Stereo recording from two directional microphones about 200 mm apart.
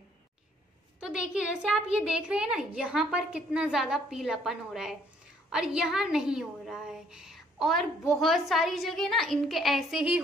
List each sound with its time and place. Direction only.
0.9 s a child's voice: 5° right (ahead or behind)